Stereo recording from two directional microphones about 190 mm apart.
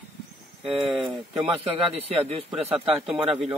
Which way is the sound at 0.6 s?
5° right (ahead or behind).